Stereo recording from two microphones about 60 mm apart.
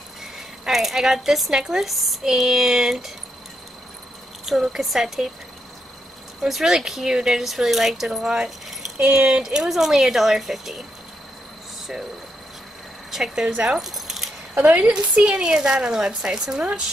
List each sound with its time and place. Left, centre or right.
0.2 s speech: centre
4.5 s speech: centre
6.4 s speech: centre
13.1 s speech: centre
13.5 s speech: right
13.7 s keys jangling: centre
14.5 s speech: right